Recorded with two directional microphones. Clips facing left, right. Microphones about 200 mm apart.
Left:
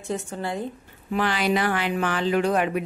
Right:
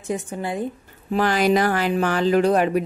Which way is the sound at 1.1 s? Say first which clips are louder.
Right 5 dB; 45° right (ahead or behind).